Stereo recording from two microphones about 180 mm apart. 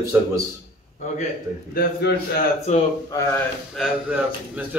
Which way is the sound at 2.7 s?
40° left (ahead or behind).